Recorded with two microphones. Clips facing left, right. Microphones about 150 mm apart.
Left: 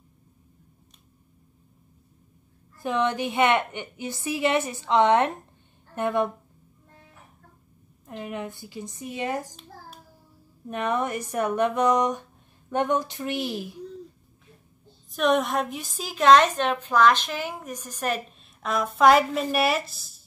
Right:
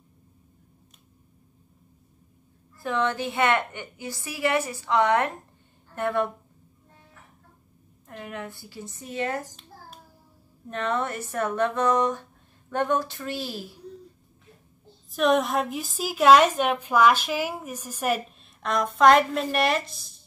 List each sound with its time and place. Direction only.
2.8 s a woman's voice: 20° left (ahead or behind)
8.2 s speech: 20° left (ahead or behind)
10.7 s speech: 15° left (ahead or behind)
15.0 s a woman's voice: centre (ahead or behind)
18.6 s speech: 5° left (ahead or behind)